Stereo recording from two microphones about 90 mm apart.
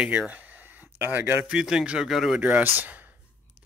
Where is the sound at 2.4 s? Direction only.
15° right (ahead or behind).